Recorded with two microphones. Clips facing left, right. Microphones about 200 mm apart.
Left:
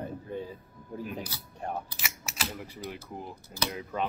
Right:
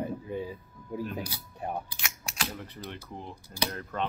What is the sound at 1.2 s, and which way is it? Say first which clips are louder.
Speech: right 2 dB; 10° right (ahead or behind).